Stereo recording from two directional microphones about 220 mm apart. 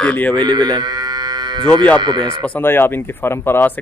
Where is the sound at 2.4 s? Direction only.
10° left (ahead or behind).